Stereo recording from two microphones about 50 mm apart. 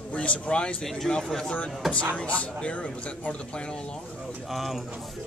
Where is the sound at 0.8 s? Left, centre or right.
Centre.